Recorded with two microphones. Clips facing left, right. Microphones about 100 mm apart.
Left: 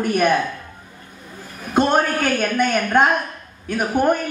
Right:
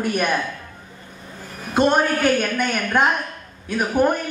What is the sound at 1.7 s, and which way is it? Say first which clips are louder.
Speech: even; 50° left (ahead or behind).